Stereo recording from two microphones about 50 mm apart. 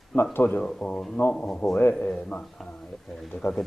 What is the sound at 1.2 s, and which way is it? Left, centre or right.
Speech, left.